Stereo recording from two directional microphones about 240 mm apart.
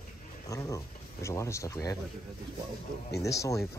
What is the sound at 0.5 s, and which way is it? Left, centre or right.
Speech, centre.